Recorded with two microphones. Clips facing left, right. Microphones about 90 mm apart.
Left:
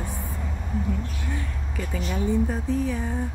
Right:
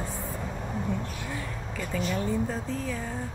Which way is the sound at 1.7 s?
10° left (ahead or behind).